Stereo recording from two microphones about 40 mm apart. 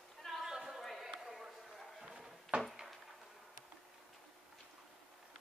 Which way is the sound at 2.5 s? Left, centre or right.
Right.